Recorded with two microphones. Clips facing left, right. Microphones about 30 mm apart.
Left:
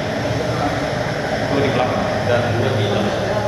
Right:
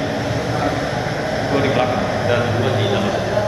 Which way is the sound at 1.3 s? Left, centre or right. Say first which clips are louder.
Right 1 dB; centre.